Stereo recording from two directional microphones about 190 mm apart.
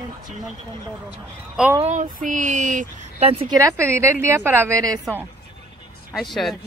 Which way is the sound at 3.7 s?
15° right (ahead or behind).